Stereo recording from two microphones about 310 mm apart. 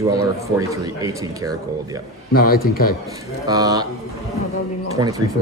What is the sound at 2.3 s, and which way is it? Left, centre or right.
Speech, left.